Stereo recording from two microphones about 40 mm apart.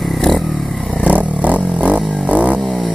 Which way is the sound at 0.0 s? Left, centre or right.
Centre.